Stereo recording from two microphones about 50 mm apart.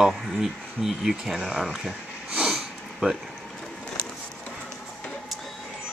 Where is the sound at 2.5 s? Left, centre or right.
Centre.